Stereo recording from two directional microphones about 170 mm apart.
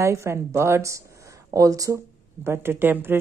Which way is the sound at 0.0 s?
15° right (ahead or behind).